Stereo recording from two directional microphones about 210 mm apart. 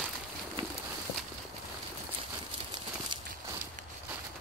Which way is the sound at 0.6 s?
25° right (ahead or behind).